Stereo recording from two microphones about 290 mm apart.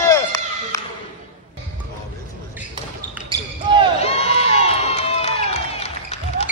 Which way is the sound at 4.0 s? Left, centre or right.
Left.